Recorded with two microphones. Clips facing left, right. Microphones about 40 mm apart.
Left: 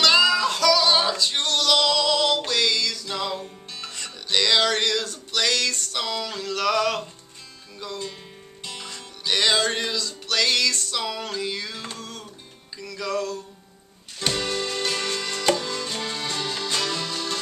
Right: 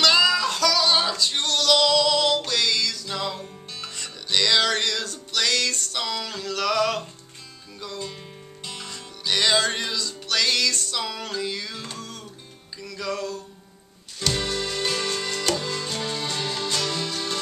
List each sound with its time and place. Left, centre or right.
0.0 s music: centre
14.5 s music: centre
14.8 s music: centre